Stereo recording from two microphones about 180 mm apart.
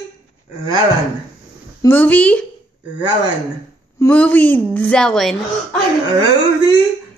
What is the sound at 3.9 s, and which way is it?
A woman's voice, 10° left (ahead or behind).